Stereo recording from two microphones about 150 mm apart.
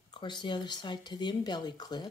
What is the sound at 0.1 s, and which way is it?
Speech, 30° left (ahead or behind).